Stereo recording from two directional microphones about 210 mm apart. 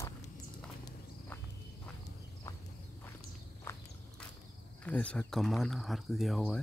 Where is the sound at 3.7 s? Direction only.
10° left (ahead or behind).